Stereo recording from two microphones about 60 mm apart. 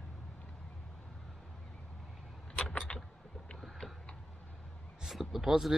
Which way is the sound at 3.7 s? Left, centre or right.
Centre.